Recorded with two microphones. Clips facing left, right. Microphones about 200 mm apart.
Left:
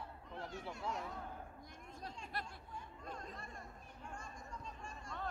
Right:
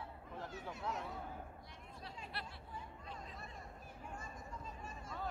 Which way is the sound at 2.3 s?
45° left (ahead or behind).